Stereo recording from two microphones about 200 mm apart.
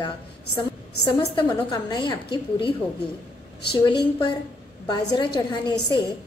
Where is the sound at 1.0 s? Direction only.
20° left (ahead or behind).